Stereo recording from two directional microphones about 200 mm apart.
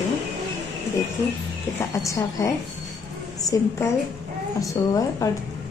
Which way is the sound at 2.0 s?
15° left (ahead or behind).